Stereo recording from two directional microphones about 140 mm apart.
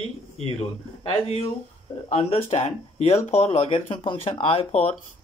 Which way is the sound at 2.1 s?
50° left (ahead or behind).